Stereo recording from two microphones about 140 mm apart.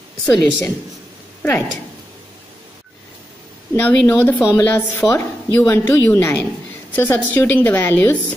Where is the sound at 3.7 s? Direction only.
10° left (ahead or behind).